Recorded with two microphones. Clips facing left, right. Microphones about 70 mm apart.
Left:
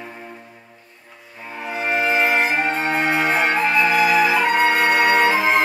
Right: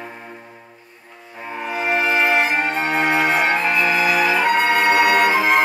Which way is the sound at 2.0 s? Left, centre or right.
Right.